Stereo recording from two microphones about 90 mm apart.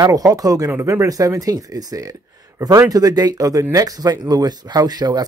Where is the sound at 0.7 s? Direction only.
30° right (ahead or behind).